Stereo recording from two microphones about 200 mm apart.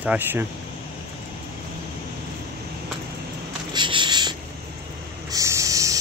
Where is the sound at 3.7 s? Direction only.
25° right (ahead or behind).